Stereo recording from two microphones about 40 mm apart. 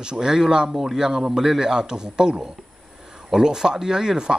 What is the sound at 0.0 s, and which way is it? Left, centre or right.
A man's voice, centre.